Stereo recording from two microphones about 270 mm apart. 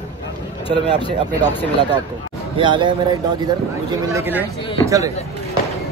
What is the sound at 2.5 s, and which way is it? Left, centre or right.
A man's voice, centre.